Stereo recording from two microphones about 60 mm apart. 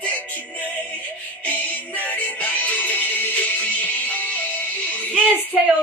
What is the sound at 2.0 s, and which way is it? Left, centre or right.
Music, left.